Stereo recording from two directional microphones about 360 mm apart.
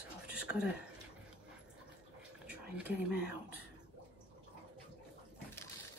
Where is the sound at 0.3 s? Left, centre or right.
Centre.